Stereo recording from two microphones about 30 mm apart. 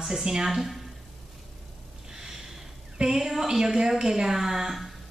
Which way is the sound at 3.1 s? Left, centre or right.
Centre.